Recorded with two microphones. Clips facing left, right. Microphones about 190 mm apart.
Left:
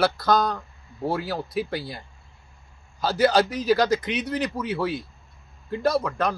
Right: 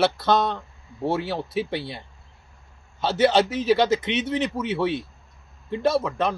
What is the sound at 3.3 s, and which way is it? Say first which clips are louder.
A man's voice: right 1 dB; 25° right (ahead or behind).